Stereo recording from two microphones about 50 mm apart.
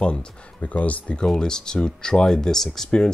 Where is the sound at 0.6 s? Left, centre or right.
Left.